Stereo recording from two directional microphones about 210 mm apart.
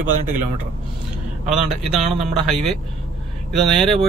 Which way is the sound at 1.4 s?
35° right (ahead or behind).